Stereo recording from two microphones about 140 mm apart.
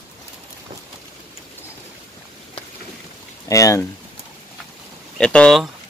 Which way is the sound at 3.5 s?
25° left (ahead or behind).